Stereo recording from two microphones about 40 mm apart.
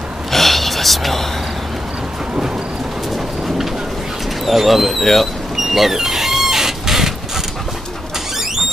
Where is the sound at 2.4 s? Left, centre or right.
Centre.